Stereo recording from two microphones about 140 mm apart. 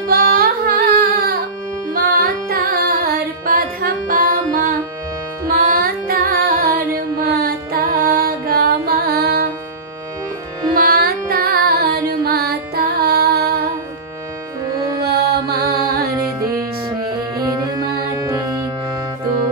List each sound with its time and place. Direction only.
0.1 s music: 90° right
10.8 s music: 90° right
15.0 s music: 90° right
17.0 s music: 30° right (ahead or behind)